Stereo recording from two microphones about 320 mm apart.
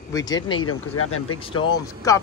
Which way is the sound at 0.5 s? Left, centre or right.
Left.